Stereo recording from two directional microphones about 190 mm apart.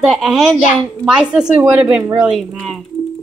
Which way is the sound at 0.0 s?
Centre (ahead or behind).